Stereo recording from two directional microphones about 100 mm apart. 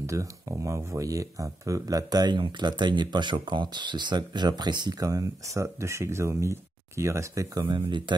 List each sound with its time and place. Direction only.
0.0 s speech: 30° right (ahead or behind); by 4.9 s 45° right (ahead or behind)
5.0 s speech: 30° right (ahead or behind)
7.7 s speech: 50° right (ahead or behind)